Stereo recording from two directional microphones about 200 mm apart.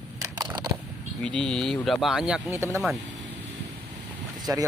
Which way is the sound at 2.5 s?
15° right (ahead or behind).